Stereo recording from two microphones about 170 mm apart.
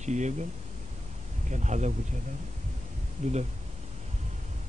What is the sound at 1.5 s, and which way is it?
Speech, 45° right (ahead or behind).